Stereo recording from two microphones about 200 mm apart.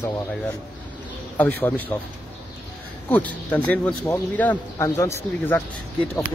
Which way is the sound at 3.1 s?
5° left (ahead or behind).